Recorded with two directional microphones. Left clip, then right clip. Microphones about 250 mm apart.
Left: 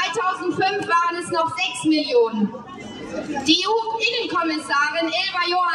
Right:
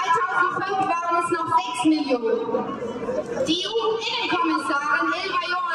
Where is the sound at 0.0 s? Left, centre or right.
Centre.